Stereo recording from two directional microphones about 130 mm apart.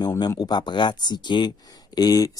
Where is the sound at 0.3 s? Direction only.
30° left (ahead or behind).